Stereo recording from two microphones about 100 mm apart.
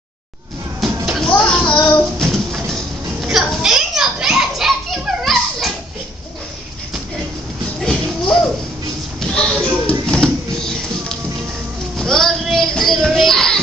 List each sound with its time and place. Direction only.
1.0 s music: centre (ahead or behind)
1.3 s music: 10° left (ahead or behind)
2.1 s a sound: centre (ahead or behind)
3.3 s children playing: 5° right (ahead or behind)
7.8 s music: 5° left (ahead or behind)
9.2 s a sound: 5° left (ahead or behind)